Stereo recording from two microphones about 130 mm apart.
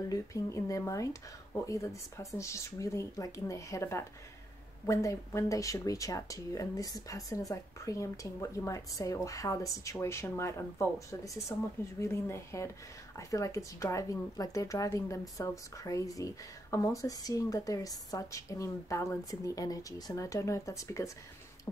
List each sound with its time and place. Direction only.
0.1 s speech: 25° left (ahead or behind)